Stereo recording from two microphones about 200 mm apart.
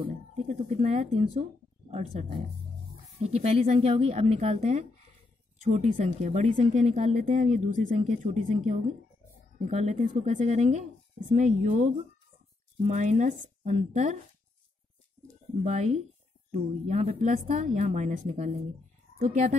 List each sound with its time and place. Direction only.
0.0 s a woman's voice: 35° right (ahead or behind)
15.6 s a woman's voice: 35° right (ahead or behind)